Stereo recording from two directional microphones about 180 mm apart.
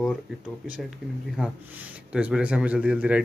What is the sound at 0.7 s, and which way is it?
A man's voice, 5° right (ahead or behind).